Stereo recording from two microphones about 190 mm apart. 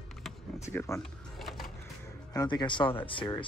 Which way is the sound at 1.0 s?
Centre (ahead or behind).